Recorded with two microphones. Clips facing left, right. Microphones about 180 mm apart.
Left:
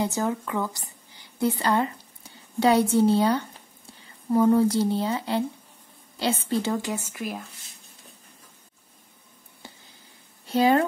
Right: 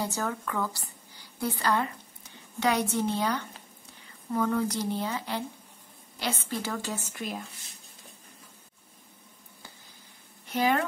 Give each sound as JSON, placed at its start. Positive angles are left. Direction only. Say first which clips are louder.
{"t": 0.0, "sound": "a woman's voice", "louder": "left 5 dB", "side_deg": 20}
{"t": 7.1, "sound": "speech", "louder": "left 3 dB", "side_deg": 5}
{"t": 10.4, "sound": "speech", "louder": "left 6 dB", "side_deg": 30}